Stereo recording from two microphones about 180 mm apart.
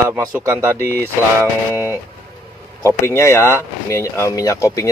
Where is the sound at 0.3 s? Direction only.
15° right (ahead or behind).